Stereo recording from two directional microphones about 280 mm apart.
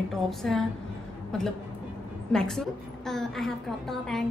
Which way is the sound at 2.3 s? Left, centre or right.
Centre.